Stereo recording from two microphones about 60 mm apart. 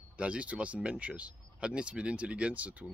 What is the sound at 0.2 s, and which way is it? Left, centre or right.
Speech, right.